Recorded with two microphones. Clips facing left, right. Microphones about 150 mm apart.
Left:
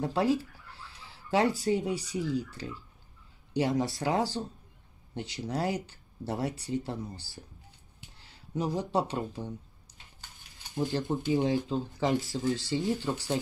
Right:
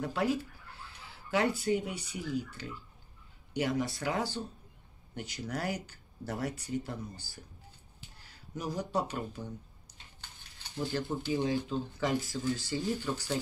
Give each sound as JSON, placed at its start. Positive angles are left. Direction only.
{"t": 0.0, "sound": "speech", "side_deg": 25}
{"t": 0.7, "sound": "chicken", "side_deg": 35}
{"t": 1.6, "sound": "speech", "side_deg": 35}
{"t": 10.7, "sound": "speech", "side_deg": 20}